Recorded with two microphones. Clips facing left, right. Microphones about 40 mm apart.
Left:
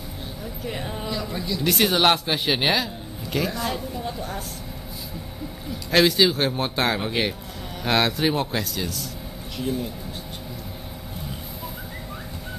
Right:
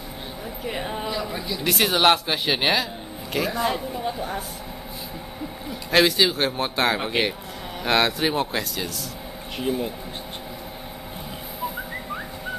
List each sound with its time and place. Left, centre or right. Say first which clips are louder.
0.7 s a man's voice: right 2 dB; centre
3.5 s speech: right 3 dB; centre
5.9 s a man's voice: even; centre
9.6 s speech: right 2 dB; right